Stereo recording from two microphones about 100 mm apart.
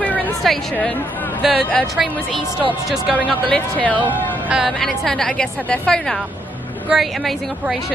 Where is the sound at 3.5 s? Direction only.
15° left (ahead or behind).